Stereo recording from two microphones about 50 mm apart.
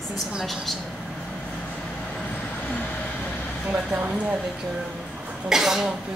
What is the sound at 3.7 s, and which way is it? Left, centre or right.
Speech, right.